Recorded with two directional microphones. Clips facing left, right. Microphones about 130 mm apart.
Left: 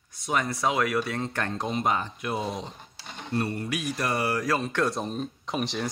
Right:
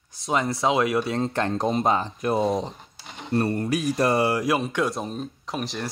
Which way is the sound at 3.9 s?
30° right (ahead or behind).